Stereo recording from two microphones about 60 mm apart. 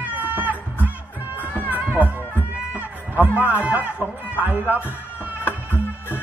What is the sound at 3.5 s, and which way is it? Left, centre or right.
Speech, right.